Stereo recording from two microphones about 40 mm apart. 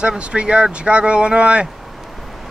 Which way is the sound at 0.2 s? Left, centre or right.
Right.